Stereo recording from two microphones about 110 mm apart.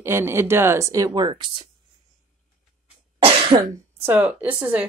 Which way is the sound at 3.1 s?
55° right (ahead or behind).